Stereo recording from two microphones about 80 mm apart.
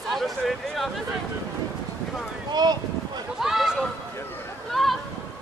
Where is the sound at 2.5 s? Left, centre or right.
Right.